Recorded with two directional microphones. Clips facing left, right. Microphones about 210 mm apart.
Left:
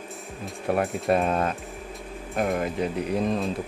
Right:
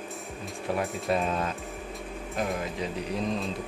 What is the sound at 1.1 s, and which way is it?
Speech, 55° left (ahead or behind).